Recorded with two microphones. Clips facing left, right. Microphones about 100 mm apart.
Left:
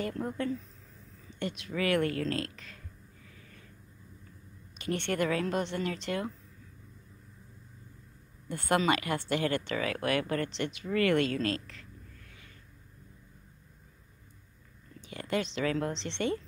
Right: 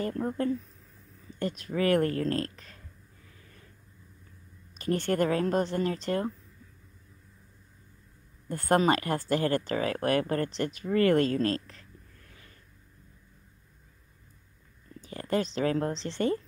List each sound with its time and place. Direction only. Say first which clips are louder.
0.0 s speech: right 3 dB; 35° right (ahead or behind)
1.4 s speech: right 4 dB; 40° right (ahead or behind)
3.3 s a sound: left 1 dB; 35° right (ahead or behind)
4.7 s speech: right 4 dB; 40° right (ahead or behind)
8.5 s speech: right 3 dB; 40° right (ahead or behind)
12.3 s a sound: even; 35° right (ahead or behind)
15.0 s speech: right 3 dB; 40° right (ahead or behind)